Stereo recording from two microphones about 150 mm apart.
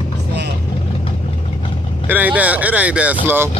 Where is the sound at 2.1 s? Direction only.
10° right (ahead or behind).